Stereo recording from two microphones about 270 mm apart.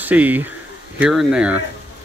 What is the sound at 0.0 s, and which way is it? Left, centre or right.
Speech, centre.